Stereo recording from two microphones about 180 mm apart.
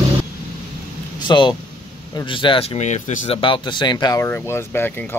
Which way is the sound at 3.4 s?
25° left (ahead or behind).